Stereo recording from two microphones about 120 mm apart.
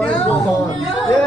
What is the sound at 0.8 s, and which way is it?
Speech, centre (ahead or behind).